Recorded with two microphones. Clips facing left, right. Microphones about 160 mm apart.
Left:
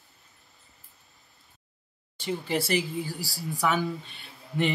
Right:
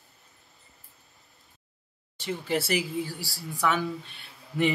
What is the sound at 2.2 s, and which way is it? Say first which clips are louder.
Speech: even; centre (ahead or behind).